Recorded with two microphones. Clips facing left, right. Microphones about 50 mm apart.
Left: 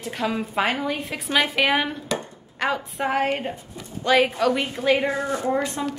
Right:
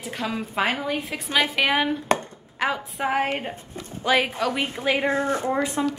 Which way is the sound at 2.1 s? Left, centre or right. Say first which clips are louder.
Right 6 dB; right.